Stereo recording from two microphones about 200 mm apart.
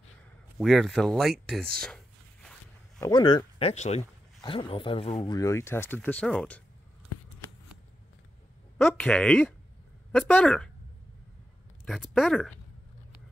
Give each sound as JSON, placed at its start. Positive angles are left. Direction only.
{"t": 0.6, "sound": "speech", "side_deg": 0}
{"t": 3.0, "sound": "speech", "side_deg": 20}
{"t": 8.7, "sound": "speech", "side_deg": 5}
{"t": 11.8, "sound": "speech", "side_deg": 0}